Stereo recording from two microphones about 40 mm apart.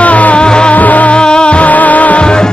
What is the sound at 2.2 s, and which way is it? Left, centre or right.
Music, left.